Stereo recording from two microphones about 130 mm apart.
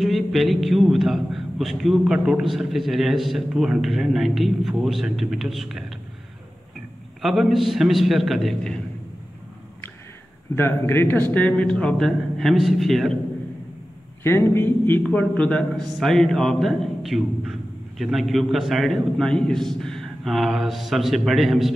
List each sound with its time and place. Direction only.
0.0 s a man's voice: centre (ahead or behind)
7.2 s a man's voice: centre (ahead or behind)
10.5 s a man's voice: 20° left (ahead or behind); by 13.2 s centre (ahead or behind)
14.2 s a man's voice: 20° left (ahead or behind); by 21.7 s centre (ahead or behind)